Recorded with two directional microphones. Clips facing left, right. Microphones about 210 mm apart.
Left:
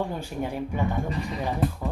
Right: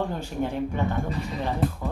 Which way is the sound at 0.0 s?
10° left (ahead or behind).